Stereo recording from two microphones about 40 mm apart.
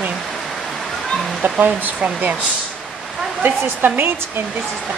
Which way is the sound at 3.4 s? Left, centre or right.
Right.